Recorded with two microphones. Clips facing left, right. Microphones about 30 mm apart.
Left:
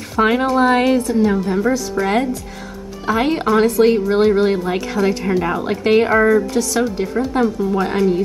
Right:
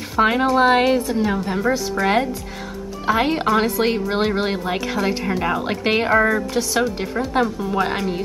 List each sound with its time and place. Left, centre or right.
0.1 s speech: centre
0.6 s speech: centre
6.5 s speech: right